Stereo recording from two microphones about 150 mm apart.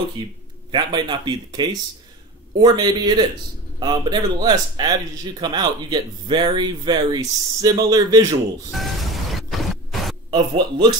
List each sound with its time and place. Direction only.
0.2 s a man's voice: 30° right (ahead or behind)
8.7 s music: centre (ahead or behind)
10.3 s speech: 30° right (ahead or behind)